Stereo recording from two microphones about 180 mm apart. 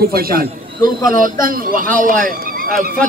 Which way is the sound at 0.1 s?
55° right (ahead or behind).